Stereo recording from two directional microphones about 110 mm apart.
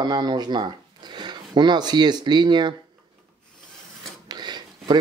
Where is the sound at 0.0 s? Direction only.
40° right (ahead or behind).